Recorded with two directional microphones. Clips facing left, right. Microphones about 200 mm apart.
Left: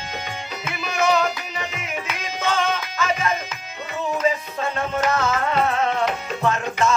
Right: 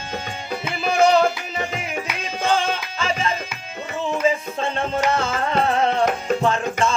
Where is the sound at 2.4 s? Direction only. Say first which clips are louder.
Right 1 dB; 30° right (ahead or behind).